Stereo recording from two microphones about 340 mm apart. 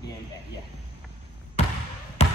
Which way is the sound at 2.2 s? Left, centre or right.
Centre.